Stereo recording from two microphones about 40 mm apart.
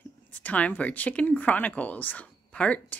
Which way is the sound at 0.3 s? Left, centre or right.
Left.